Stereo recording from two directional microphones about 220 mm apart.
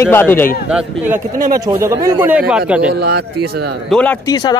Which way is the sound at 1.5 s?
15° right (ahead or behind).